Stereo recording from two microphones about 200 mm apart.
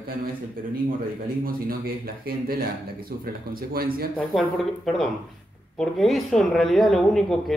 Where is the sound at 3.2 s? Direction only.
50° right (ahead or behind).